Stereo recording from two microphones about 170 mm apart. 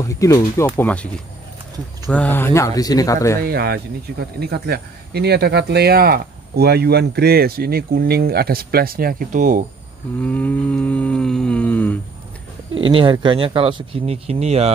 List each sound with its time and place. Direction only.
0.1 s speech: 20° left (ahead or behind)
0.7 s cattle: 10° left (ahead or behind)
2.0 s cattle: 10° left (ahead or behind)
3.3 s speech: 70° right (ahead or behind); by 9.7 s 50° right (ahead or behind)
10.2 s cattle: 10° left (ahead or behind)
12.7 s speech: 30° right (ahead or behind)